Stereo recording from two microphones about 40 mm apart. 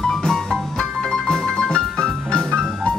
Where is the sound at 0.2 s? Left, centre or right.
Centre.